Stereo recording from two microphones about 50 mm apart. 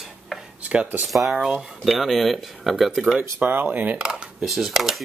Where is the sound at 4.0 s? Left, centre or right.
Centre.